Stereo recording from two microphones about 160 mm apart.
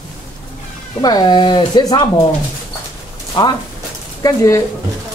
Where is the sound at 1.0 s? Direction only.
25° left (ahead or behind).